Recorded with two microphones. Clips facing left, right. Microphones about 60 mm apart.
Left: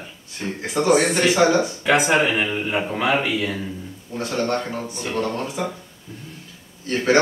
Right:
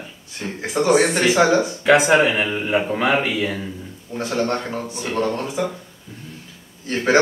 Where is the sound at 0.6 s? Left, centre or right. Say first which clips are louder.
Right 1 dB; centre.